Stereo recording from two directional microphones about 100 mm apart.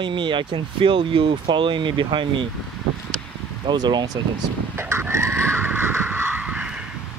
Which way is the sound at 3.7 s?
45° right (ahead or behind).